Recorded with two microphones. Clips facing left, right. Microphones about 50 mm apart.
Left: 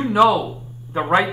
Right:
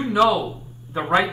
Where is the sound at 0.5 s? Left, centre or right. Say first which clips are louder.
Left 3 dB; left.